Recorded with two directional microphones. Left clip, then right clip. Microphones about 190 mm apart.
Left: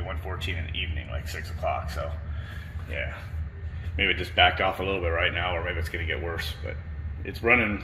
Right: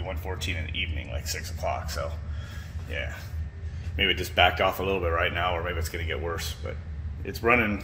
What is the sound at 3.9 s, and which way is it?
Speech, 20° right (ahead or behind).